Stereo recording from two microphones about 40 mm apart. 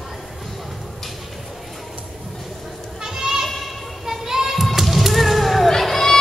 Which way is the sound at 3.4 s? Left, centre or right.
Centre.